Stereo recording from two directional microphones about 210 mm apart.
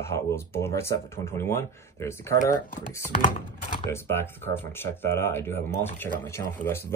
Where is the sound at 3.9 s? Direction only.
10° left (ahead or behind).